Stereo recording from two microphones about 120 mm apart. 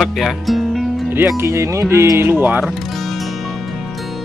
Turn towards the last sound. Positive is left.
turn(degrees=0)  # may be behind; listen again after turning